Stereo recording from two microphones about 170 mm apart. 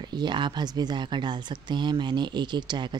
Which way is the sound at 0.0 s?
25° right (ahead or behind).